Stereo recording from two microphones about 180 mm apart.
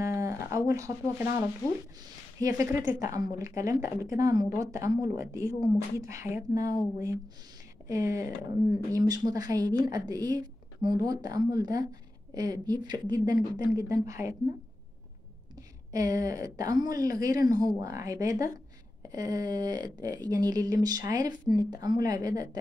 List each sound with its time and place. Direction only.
0.0 s a sound: 15° right (ahead or behind)
0.5 s a woman's voice: 15° right (ahead or behind)
7.9 s a woman's voice: 15° right (ahead or behind)
15.5 s speech: 20° right (ahead or behind)